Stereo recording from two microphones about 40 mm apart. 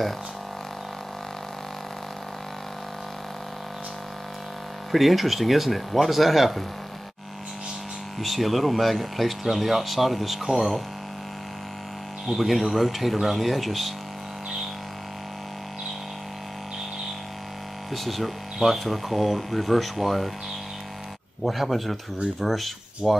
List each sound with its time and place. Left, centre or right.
4.9 s speech: centre
8.2 s speech: centre
12.3 s speech: centre
17.9 s speech: centre
21.5 s speech: centre